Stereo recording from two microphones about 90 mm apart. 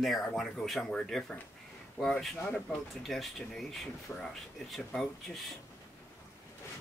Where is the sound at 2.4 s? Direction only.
20° left (ahead or behind).